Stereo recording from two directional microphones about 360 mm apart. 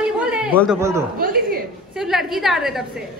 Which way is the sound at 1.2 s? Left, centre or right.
Right.